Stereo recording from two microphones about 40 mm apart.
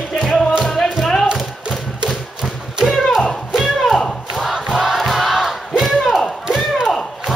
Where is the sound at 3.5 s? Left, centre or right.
Centre.